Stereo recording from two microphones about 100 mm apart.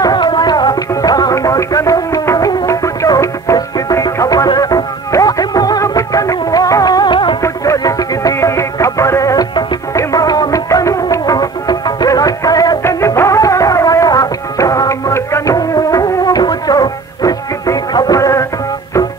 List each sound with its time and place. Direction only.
0.0 s music: 45° left (ahead or behind)
7.4 s music: 35° left (ahead or behind)
12.8 s music: 25° left (ahead or behind)